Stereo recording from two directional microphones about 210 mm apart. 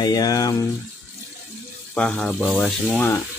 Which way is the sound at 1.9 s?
5° left (ahead or behind).